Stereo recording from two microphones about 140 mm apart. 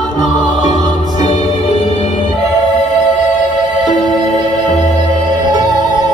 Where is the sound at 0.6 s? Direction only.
60° left (ahead or behind).